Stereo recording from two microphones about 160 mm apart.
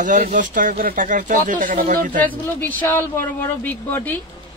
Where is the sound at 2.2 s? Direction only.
10° left (ahead or behind).